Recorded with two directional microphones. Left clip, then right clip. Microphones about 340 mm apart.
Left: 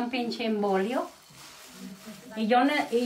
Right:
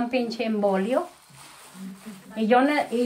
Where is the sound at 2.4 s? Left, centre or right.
Centre.